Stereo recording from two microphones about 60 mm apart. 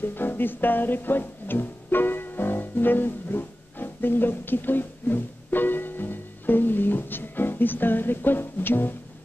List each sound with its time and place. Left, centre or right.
0.0 s music: left